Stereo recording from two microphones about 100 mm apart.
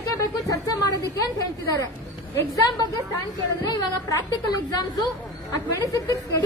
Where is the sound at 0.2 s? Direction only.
35° left (ahead or behind).